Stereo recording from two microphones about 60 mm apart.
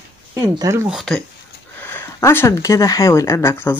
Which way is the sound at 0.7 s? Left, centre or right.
Right.